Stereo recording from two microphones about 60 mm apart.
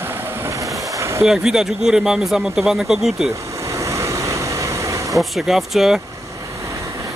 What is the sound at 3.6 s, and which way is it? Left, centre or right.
Vehicle, right.